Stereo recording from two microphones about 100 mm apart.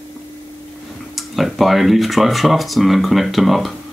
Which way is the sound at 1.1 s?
Centre (ahead or behind).